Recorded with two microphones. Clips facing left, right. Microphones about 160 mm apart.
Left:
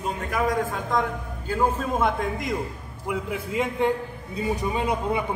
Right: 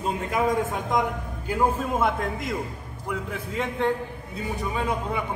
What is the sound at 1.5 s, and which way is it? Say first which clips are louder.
A man's voice: even; 10° right (ahead or behind).